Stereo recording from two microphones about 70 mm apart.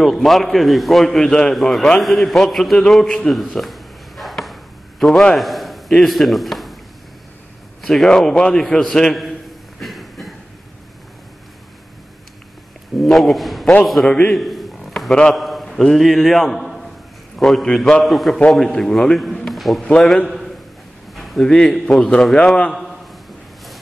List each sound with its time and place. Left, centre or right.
0.0 s a man's voice: centre
3.5 s chop: centre
5.4 s a man's voice: centre
7.8 s a man's voice: centre
9.8 s train: centre
13.0 s a man's voice: centre
14.0 s a man's voice: centre
14.3 s a sound: centre
15.3 s a man's voice: centre
20.2 s a sound: centre
21.8 s a man's voice: centre